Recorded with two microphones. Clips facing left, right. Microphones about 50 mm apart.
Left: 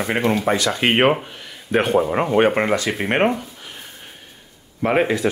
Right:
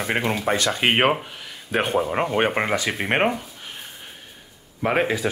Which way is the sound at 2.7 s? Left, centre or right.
Centre.